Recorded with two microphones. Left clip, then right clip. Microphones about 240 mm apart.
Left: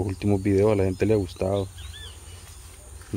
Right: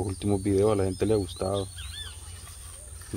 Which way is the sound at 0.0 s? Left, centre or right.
Left.